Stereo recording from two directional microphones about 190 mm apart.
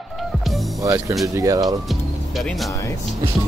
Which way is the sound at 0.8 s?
15° right (ahead or behind).